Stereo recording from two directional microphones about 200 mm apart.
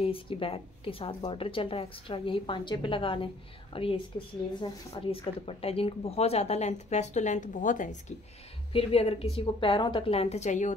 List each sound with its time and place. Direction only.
0.0 s a woman's voice: 25° left (ahead or behind)
8.7 s a woman's voice: 30° left (ahead or behind)